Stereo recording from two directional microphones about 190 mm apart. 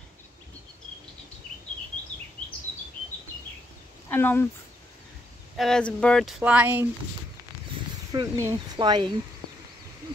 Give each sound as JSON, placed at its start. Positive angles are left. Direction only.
{"t": 4.1, "sound": "speech", "side_deg": 10}
{"t": 5.6, "sound": "speech", "side_deg": 5}
{"t": 6.4, "sound": "speech", "side_deg": -10}
{"t": 8.1, "sound": "speech", "side_deg": -20}